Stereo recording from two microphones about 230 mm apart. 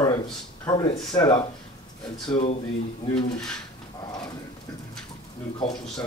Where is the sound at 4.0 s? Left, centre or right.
Centre.